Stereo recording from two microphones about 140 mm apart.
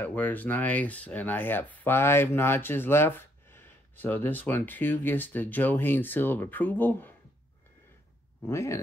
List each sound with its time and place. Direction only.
0.0 s speech: 10° left (ahead or behind)
8.5 s speech: 20° left (ahead or behind)